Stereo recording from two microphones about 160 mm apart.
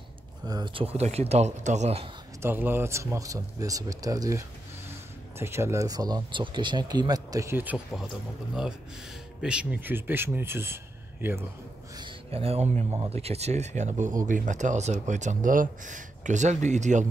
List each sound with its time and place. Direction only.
0.5 s speech: 25° right (ahead or behind)
0.8 s speech: 40° right (ahead or behind)
2.4 s speech: 15° right (ahead or behind)
9.4 s speech: 5° right (ahead or behind)
12.0 s speech: 35° right (ahead or behind)